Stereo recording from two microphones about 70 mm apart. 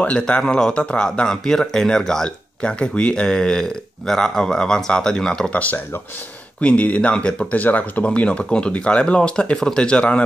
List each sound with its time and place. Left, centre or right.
0.2 s speech: centre